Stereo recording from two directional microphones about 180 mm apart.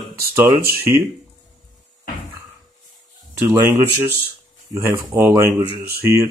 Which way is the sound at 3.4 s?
15° right (ahead or behind).